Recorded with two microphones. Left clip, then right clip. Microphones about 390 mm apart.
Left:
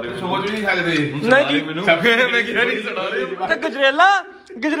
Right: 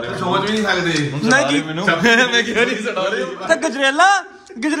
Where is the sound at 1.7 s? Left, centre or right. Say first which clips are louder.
Right 1 dB; right.